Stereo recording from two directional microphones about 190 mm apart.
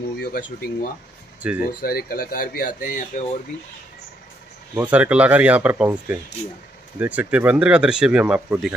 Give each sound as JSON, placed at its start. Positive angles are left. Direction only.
{"t": 0.2, "sound": "speech", "side_deg": 55}
{"t": 4.7, "sound": "speech", "side_deg": -10}